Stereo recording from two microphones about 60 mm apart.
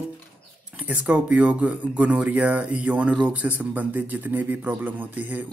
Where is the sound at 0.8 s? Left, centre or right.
Right.